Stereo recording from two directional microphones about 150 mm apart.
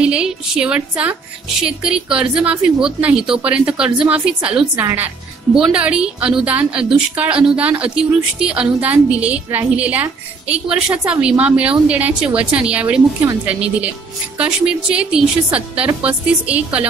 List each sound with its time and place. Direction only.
0.0 s a woman's voice: 5° right (ahead or behind)